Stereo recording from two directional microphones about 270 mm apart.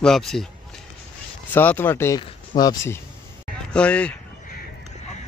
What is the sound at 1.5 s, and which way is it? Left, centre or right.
Speech, centre.